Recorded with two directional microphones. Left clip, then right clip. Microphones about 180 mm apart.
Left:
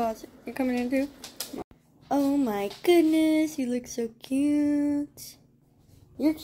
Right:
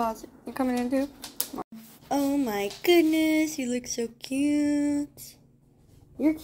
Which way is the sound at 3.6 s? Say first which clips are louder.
Even; 15° left (ahead or behind).